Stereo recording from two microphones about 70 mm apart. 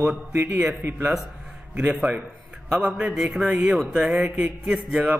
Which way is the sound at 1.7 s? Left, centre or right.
Centre.